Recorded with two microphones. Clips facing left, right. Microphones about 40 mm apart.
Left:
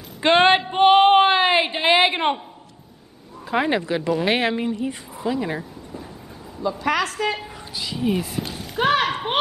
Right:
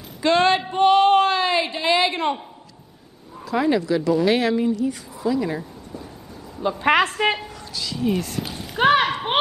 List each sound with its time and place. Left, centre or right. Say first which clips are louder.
0.2 s a woman's voice: left 2 dB; left
3.4 s a woman's voice: right 1 dB; left
6.8 s a woman's voice: right 5 dB; right
7.4 s speech: even; centre
8.5 s a sound: even; centre
8.7 s speech: right 2 dB; centre